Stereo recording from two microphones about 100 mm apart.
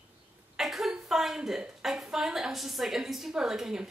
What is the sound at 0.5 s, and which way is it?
A woman's voice, centre (ahead or behind).